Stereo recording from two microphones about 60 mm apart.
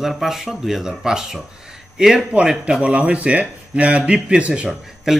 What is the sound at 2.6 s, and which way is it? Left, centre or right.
A man's voice, right.